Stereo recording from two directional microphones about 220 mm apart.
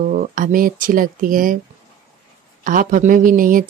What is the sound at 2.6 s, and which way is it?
Speech, 40° right (ahead or behind).